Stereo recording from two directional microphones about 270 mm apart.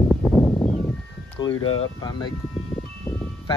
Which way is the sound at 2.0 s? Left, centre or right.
Centre.